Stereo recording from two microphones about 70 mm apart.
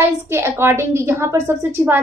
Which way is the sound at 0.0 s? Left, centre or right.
Right.